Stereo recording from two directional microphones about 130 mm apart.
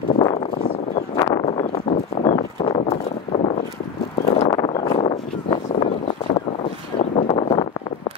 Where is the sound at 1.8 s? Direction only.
60° left (ahead or behind).